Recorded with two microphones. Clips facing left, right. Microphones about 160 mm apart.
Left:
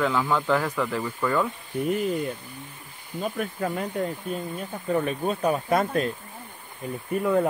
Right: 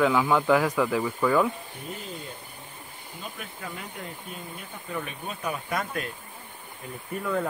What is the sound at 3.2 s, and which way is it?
Speech, 45° left (ahead or behind).